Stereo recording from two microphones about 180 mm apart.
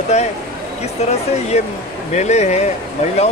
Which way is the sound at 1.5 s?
40° left (ahead or behind).